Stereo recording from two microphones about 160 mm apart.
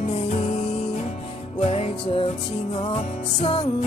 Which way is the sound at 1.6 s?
35° left (ahead or behind).